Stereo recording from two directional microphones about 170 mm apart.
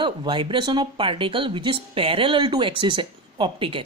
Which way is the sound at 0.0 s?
30° right (ahead or behind).